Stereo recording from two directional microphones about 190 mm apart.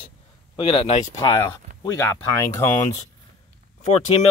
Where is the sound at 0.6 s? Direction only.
30° left (ahead or behind).